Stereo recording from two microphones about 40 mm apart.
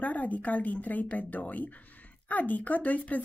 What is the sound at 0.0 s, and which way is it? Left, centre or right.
Speech, left.